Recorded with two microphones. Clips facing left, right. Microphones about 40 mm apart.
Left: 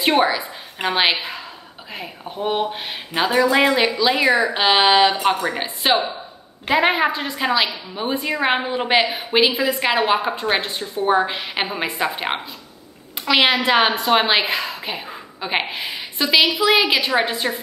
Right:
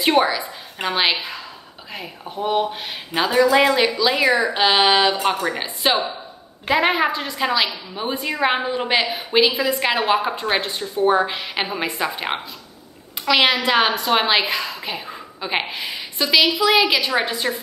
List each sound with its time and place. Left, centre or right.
0.0 s a woman's voice: centre
2.0 s a woman's voice: centre
13.3 s a woman's voice: centre